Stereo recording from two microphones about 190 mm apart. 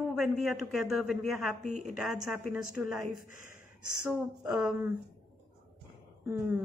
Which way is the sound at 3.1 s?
45° left (ahead or behind).